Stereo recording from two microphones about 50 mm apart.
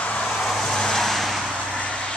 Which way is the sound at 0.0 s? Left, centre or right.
Left.